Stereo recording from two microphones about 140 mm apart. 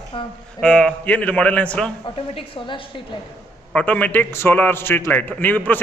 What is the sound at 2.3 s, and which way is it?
Speech, 40° left (ahead or behind).